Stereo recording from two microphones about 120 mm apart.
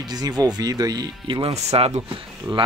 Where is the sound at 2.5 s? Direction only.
30° right (ahead or behind).